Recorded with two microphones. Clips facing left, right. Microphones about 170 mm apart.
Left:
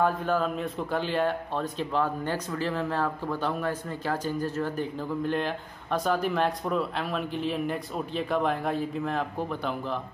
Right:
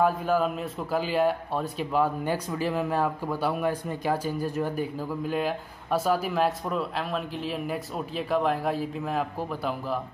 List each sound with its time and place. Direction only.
0.0 s speech: 10° right (ahead or behind)